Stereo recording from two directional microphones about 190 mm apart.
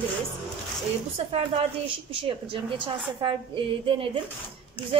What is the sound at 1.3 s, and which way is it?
A woman's voice, 35° right (ahead or behind).